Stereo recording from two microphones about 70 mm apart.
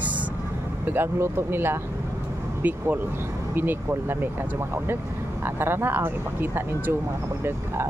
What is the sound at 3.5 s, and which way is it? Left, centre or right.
Speech, right.